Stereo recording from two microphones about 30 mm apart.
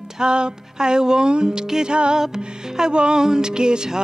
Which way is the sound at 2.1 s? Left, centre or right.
Right.